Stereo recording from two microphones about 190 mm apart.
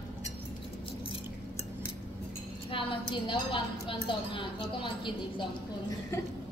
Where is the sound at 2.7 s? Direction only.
25° left (ahead or behind).